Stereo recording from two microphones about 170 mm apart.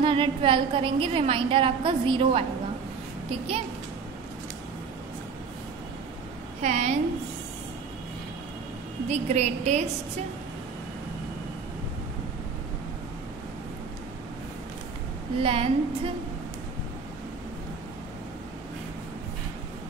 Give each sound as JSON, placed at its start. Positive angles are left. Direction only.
{"t": 0.0, "sound": "a woman's voice", "side_deg": -30}
{"t": 6.6, "sound": "a woman's voice", "side_deg": -40}
{"t": 9.1, "sound": "a woman's voice", "side_deg": -40}
{"t": 15.3, "sound": "a woman's voice", "side_deg": -35}